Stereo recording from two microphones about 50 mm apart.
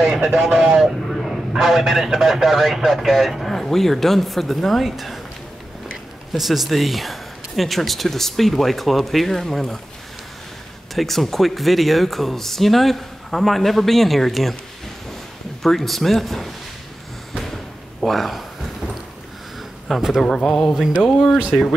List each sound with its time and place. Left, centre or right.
0.0 s speech: centre
1.0 s vehicle: centre
1.5 s speech: centre
6.3 s speech: centre
11.0 s speech: centre
15.6 s speech: centre
18.0 s speech: centre
20.0 s speech: centre
20.2 s speech: centre